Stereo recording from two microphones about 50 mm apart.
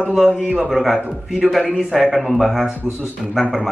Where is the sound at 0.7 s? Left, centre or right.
Centre.